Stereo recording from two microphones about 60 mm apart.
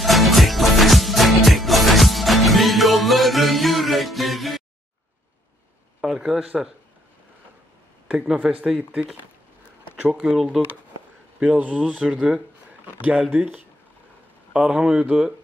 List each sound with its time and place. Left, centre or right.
0.0 s music: centre
5.9 s a sound: centre
8.4 s speech: centre
9.9 s speech: right
10.2 s speech: centre
11.3 s speech: right
13.0 s speech: right
14.5 s speech: right